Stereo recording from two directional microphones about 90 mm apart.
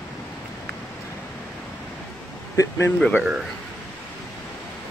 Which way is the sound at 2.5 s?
40° left (ahead or behind).